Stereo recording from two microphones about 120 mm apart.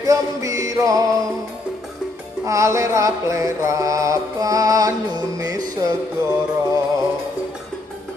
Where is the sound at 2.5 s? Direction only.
25° right (ahead or behind).